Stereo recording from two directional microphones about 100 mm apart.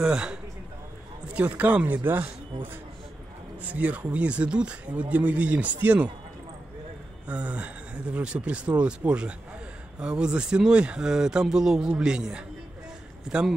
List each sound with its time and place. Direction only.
0.0 s speech: 10° right (ahead or behind)
7.2 s speech: 15° right (ahead or behind)